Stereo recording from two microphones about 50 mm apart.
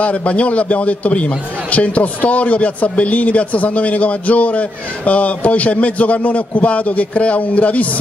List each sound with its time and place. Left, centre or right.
0.0 s a man's voice: left